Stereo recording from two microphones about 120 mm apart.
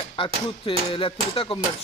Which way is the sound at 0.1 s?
45° left (ahead or behind).